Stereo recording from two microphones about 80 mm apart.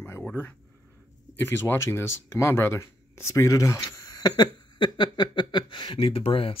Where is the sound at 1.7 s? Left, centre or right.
Left.